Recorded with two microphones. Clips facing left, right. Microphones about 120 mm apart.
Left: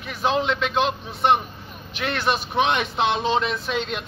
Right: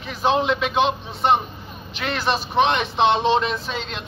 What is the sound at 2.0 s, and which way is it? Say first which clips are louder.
Speech: even; centre (ahead or behind).